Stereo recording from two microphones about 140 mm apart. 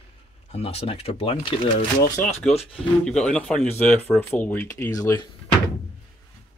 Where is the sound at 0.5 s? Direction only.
50° left (ahead or behind).